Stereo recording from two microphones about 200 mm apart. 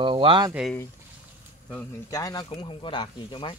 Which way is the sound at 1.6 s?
15° left (ahead or behind).